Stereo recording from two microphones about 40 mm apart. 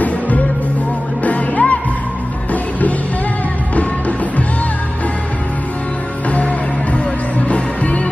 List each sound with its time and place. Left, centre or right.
1.2 s music: left
6.3 s music: left